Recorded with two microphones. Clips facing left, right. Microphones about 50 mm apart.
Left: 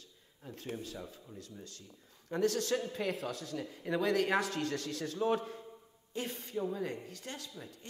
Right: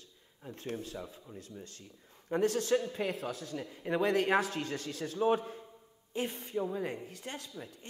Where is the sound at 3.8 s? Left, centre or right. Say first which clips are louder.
Right 2 dB; centre.